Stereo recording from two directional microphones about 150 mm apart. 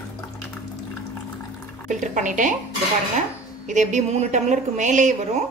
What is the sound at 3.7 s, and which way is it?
A woman's voice, 55° right (ahead or behind).